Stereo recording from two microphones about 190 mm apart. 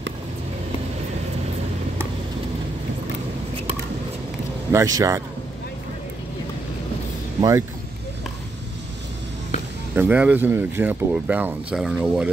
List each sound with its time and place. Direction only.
4.7 s speech: 15° right (ahead or behind)
7.3 s speech: 20° right (ahead or behind)
9.9 s speech: 10° right (ahead or behind)